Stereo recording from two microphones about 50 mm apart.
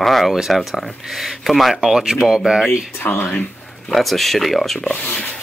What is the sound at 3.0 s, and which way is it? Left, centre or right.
Speech, left.